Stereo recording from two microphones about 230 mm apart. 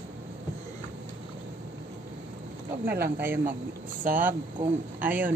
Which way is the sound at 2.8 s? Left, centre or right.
Right.